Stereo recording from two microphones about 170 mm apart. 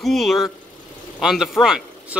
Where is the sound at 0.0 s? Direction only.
Centre (ahead or behind).